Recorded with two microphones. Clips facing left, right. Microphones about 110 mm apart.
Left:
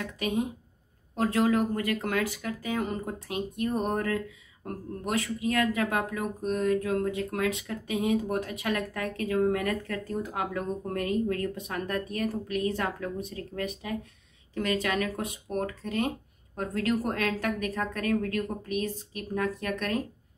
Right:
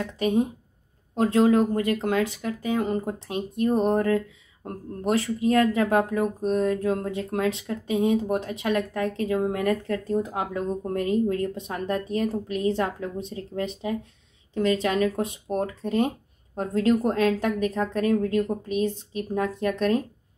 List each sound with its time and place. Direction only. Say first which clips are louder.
0.0 s speech: right 6 dB; 35° right (ahead or behind)